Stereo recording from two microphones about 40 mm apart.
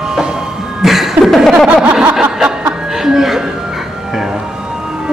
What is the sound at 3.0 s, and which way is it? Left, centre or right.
Speech, centre.